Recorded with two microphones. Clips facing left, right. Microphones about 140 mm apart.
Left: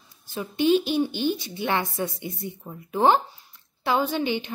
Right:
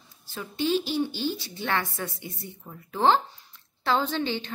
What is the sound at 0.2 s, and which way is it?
Speech, 15° left (ahead or behind).